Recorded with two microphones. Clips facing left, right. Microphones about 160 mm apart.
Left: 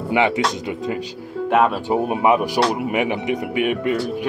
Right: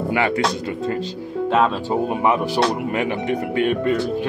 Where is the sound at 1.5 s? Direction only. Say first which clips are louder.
Left 2 dB; 15° left (ahead or behind).